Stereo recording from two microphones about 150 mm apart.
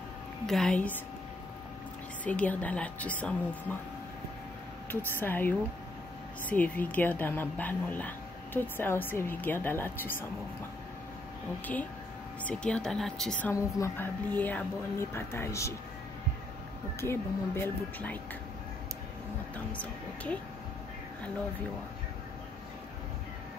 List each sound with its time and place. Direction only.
0.5 s a woman's voice: 5° left (ahead or behind)
2.2 s speech: 10° left (ahead or behind)
5.2 s speech: 10° left (ahead or behind)
12.4 s a woman's voice: 5° left (ahead or behind)
13.5 s speech: 20° left (ahead or behind)
17.0 s speech: 15° left (ahead or behind)
19.5 s speech: 10° left (ahead or behind)